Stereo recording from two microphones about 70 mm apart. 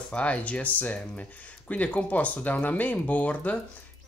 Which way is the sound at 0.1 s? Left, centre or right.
Centre.